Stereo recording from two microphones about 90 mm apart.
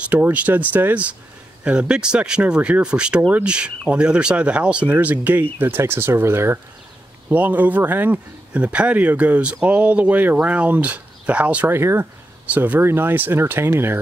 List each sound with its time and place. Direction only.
0.0 s speech: 15° right (ahead or behind)